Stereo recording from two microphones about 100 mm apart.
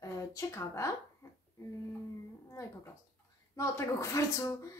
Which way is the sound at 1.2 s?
35° left (ahead or behind).